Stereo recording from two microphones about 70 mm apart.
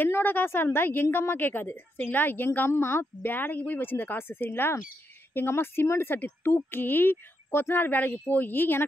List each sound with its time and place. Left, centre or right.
0.0 s a woman's voice: left